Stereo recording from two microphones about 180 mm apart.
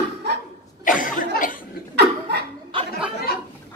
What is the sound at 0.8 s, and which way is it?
Cough, 50° left (ahead or behind).